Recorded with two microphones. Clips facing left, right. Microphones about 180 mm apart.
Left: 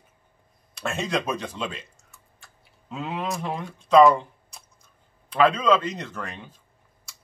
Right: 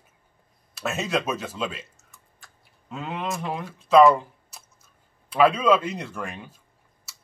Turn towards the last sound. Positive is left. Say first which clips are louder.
# right 2 dB
turn(degrees=-10)  # may be behind; listen again after turning